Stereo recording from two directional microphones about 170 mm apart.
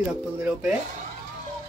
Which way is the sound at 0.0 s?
5° right (ahead or behind).